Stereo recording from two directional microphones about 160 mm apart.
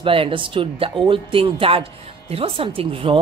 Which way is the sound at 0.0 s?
35° right (ahead or behind).